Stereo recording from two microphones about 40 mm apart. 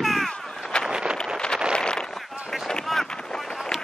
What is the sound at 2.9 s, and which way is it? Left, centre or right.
Boat, centre.